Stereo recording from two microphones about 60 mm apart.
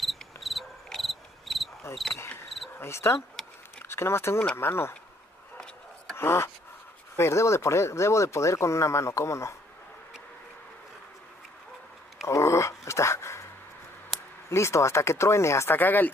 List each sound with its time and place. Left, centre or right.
0.0 s cricket: centre
2.8 s speech: left
3.4 s a sound: centre
3.8 s speech: left
6.1 s speech: left
12.3 s dog: left
14.5 s speech: left
15.8 s speech: left